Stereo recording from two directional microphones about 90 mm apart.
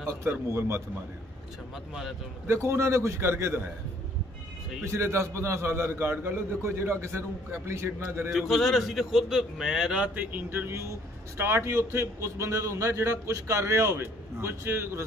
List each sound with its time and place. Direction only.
0.2 s a man's voice: 30° right (ahead or behind)
2.4 s a man's voice: 30° right (ahead or behind)
4.9 s a man's voice: 30° right (ahead or behind)
8.3 s a man's voice: centre (ahead or behind); by 15.0 s 30° right (ahead or behind)